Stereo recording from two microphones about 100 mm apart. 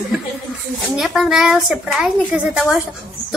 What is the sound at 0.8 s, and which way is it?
Speech, centre (ahead or behind).